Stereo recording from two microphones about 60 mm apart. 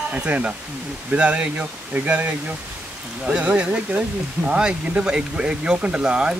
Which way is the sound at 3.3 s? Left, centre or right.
Right.